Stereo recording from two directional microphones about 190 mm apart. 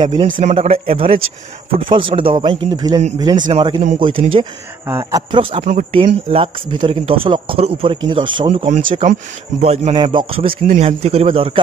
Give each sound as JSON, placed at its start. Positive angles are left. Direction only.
{"t": 0.0, "sound": "speech", "side_deg": -25}
{"t": 0.3, "sound": "speech", "side_deg": -40}
{"t": 4.8, "sound": "speech", "side_deg": -20}